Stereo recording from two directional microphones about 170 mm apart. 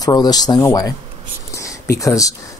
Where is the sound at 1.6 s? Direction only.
20° left (ahead or behind).